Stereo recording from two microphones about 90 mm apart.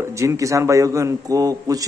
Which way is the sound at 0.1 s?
35° right (ahead or behind).